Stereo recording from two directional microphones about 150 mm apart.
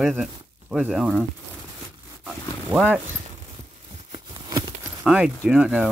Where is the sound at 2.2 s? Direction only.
Centre (ahead or behind).